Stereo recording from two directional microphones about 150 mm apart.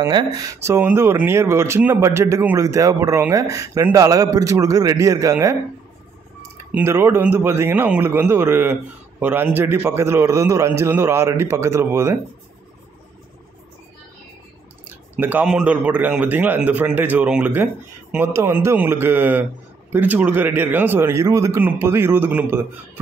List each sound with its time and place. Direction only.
0.0 s speech: 25° right (ahead or behind)
6.7 s a man's voice: 15° right (ahead or behind)
14.9 s a man's voice: 10° right (ahead or behind)